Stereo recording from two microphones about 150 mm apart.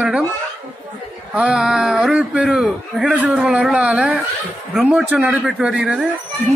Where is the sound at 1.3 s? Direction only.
5° right (ahead or behind).